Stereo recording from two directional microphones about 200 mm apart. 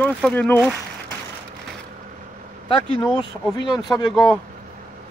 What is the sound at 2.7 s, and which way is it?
Speech, 25° left (ahead or behind).